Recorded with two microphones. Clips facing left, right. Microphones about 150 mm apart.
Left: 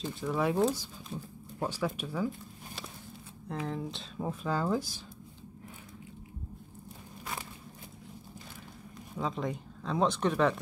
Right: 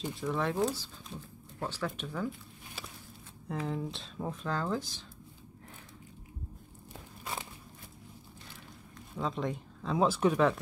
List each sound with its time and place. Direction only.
0.0 s speech: centre (ahead or behind)
3.6 s speech: centre (ahead or behind)
9.1 s speech: centre (ahead or behind)